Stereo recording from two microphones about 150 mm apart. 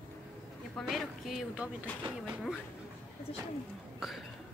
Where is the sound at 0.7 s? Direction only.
Centre (ahead or behind).